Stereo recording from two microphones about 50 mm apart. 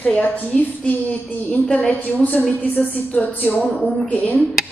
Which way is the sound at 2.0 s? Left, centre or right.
Left.